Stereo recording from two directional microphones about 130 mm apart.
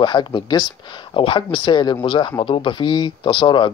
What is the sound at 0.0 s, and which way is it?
Speech, 35° left (ahead or behind).